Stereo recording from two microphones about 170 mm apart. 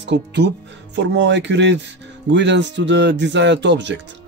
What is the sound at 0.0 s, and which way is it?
Speech, 90° right.